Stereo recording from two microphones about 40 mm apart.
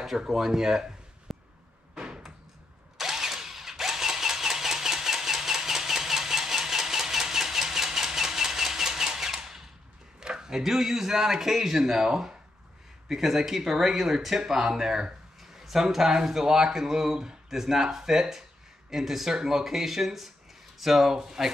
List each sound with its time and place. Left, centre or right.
0.1 s speech: centre
0.5 s a sound: centre
2.0 s door: centre
3.0 s engine starting: centre
10.2 s speech: centre
11.8 s speech: centre
13.1 s speech: centre